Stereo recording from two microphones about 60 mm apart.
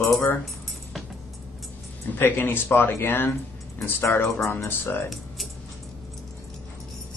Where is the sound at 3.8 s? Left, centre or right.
Left.